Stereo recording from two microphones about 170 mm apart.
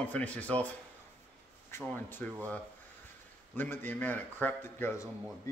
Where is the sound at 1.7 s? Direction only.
10° left (ahead or behind).